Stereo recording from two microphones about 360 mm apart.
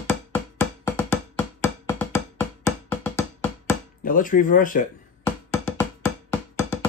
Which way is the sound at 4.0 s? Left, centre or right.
Left.